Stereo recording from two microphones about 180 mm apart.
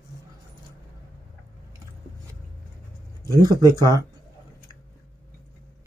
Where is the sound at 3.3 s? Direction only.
20° right (ahead or behind).